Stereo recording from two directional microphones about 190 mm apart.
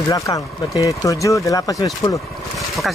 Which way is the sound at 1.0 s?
15° left (ahead or behind).